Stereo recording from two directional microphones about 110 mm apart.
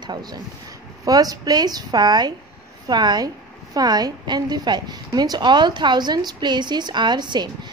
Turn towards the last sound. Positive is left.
turn(degrees=-40)  # may be behind; listen again after turning